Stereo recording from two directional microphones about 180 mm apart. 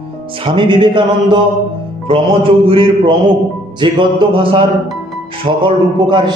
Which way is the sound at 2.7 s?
30° right (ahead or behind).